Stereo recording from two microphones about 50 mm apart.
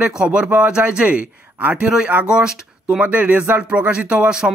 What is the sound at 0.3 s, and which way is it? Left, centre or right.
A man's voice, right.